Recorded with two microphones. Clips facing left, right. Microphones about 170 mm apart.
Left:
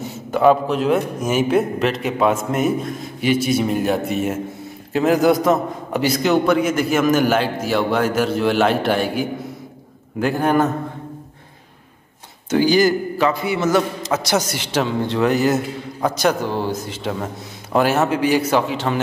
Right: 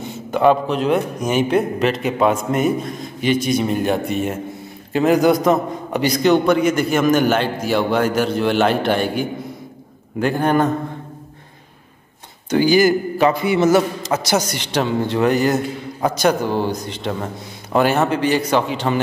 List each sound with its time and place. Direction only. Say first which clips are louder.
0.3 s a man's voice: even; centre (ahead or behind)
12.4 s a man's voice: right 1 dB; centre (ahead or behind)
13.2 s a man's voice: right 4 dB; 15° right (ahead or behind)
13.7 s a man's voice: right 1 dB; centre (ahead or behind)